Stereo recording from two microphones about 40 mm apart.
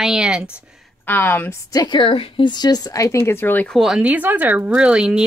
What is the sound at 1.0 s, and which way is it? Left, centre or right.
Speech, left.